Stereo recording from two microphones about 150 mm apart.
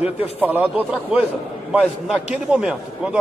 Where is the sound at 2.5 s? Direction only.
5° right (ahead or behind).